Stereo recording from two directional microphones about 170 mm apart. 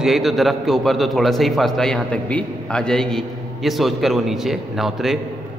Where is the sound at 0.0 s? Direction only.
Centre (ahead or behind).